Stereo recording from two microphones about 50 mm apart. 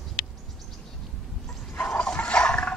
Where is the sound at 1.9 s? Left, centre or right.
Centre.